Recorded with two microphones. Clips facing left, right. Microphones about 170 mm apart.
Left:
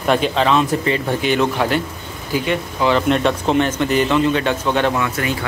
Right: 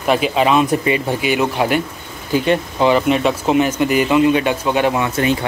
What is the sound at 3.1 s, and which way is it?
Speech, 5° right (ahead or behind).